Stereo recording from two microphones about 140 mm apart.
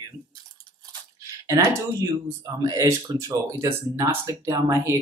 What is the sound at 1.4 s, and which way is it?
Speech, 25° right (ahead or behind).